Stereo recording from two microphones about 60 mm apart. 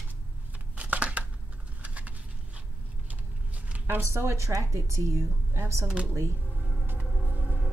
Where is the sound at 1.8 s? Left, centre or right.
Right.